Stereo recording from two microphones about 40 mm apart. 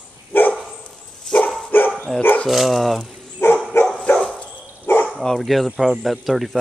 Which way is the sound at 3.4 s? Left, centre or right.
Left.